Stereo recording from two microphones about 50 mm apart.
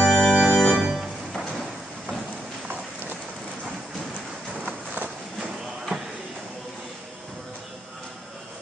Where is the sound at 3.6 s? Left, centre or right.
Centre.